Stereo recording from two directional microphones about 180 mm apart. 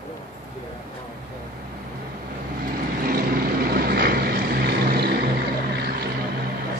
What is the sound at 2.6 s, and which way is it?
Vehicle, 55° right (ahead or behind).